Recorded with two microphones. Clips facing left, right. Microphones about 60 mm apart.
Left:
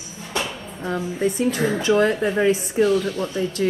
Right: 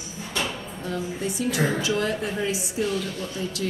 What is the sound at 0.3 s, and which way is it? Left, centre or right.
Music, left.